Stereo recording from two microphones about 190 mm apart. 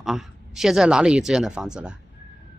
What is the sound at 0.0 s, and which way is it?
A woman's voice, centre (ahead or behind).